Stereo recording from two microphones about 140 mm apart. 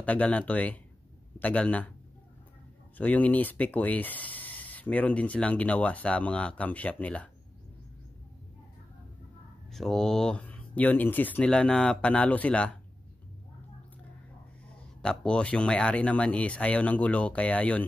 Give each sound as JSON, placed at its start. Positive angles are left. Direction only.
{"t": 0.0, "sound": "speech", "side_deg": 10}
{"t": 3.0, "sound": "speech", "side_deg": 10}
{"t": 9.7, "sound": "speech", "side_deg": 0}
{"t": 15.0, "sound": "speech", "side_deg": 5}